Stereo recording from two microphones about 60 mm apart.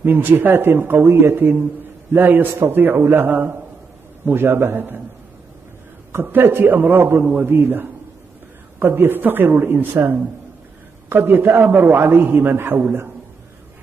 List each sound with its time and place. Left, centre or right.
0.0 s a man's voice: right
6.3 s speech: right